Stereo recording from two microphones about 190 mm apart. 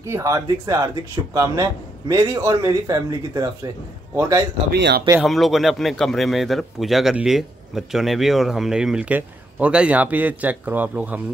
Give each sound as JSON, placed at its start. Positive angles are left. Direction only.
{"t": 0.0, "sound": "a man's voice", "side_deg": -15}
{"t": 4.7, "sound": "speech", "side_deg": -65}
{"t": 5.2, "sound": "a man's voice", "side_deg": 0}